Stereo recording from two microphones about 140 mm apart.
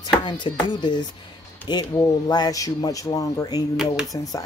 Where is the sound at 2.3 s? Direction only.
25° left (ahead or behind).